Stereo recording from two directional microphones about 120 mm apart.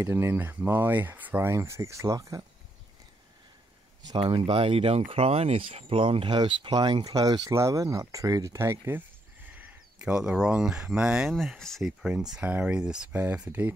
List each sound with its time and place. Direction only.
0.0 s speech: 20° right (ahead or behind)
4.2 s speech: 45° right (ahead or behind); by 11.3 s 10° right (ahead or behind)
11.3 s speech: centre (ahead or behind)
12.0 s speech: 5° right (ahead or behind)